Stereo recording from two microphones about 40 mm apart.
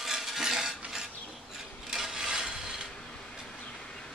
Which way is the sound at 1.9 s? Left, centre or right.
Centre.